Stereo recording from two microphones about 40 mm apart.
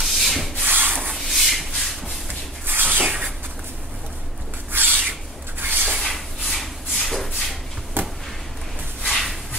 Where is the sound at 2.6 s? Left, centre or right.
Right.